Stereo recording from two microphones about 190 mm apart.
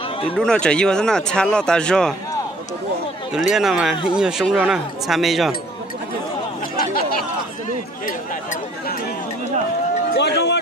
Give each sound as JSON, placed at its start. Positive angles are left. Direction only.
{"t": 0.4, "sound": "speech", "side_deg": 5}
{"t": 3.3, "sound": "speech", "side_deg": 0}
{"t": 6.8, "sound": "chatter", "side_deg": 50}
{"t": 10.1, "sound": "speech", "side_deg": 60}